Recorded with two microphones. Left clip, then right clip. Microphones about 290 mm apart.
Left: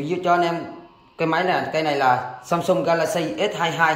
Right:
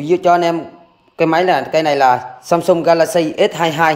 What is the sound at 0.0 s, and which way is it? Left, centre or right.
Speech, centre.